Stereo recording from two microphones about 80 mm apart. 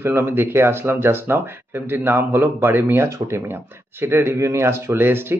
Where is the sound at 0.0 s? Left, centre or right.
Right.